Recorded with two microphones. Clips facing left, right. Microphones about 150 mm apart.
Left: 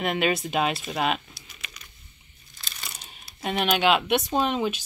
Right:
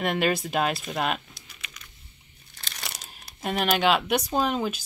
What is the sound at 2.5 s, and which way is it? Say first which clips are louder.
Crunch: right 2 dB; 70° right (ahead or behind).